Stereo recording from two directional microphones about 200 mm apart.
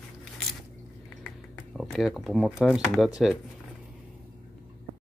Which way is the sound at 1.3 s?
Centre (ahead or behind).